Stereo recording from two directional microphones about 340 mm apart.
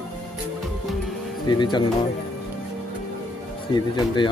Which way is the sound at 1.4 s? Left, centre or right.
Centre.